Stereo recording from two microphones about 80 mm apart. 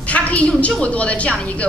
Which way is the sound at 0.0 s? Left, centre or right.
Centre.